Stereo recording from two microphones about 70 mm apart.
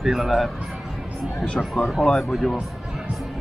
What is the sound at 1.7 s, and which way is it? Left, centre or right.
Speech, centre.